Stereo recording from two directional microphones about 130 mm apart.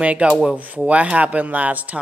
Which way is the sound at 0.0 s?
10° right (ahead or behind).